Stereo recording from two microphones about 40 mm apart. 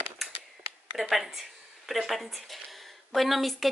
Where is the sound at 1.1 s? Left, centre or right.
Centre.